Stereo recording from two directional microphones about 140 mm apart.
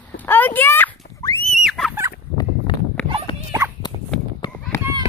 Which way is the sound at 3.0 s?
10° left (ahead or behind).